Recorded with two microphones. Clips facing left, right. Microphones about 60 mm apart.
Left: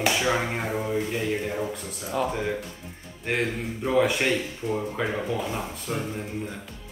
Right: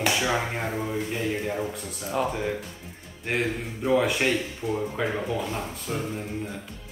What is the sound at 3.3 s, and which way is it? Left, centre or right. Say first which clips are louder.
Speech: even; centre.